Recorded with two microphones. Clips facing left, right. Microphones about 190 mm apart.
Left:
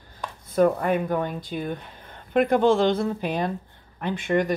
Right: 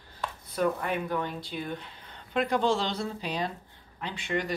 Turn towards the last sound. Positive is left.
turn(degrees=50)  # may be behind; listen again after turning